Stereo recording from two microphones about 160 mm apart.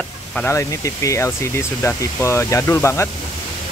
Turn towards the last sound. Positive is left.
turn(degrees=15)  # may be behind; listen again after turning